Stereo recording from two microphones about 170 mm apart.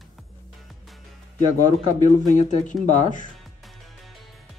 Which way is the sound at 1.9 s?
45° left (ahead or behind).